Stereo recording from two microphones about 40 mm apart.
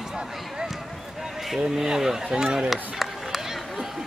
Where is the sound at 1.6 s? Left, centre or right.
Centre.